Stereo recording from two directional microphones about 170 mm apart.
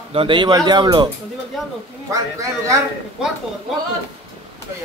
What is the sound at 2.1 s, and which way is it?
Speech, 20° right (ahead or behind).